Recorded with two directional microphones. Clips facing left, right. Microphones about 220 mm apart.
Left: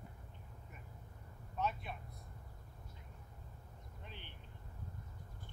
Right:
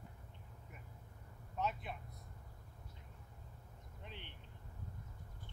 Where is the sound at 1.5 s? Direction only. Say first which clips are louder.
Left 1 dB; 20° right (ahead or behind).